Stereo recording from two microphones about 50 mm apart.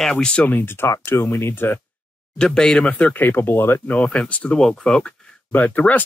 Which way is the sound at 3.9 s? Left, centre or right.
Left.